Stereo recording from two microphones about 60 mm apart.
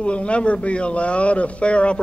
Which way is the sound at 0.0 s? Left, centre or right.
Centre.